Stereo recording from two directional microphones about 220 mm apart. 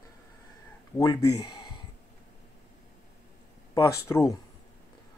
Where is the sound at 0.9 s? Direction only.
15° left (ahead or behind).